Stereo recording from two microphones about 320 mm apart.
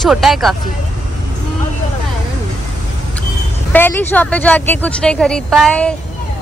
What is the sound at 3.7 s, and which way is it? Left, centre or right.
Speech, centre.